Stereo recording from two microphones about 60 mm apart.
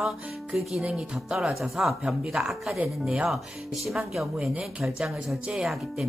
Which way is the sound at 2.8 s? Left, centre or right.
Right.